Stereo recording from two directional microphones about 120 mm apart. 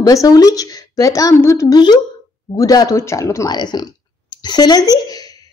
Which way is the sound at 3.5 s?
35° left (ahead or behind).